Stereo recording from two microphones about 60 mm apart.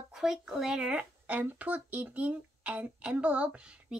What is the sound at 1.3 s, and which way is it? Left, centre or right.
A child's voice, right.